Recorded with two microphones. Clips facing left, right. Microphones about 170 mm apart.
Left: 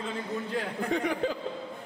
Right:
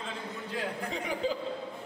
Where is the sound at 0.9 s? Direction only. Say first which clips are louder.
Left 5 dB; 60° left (ahead or behind).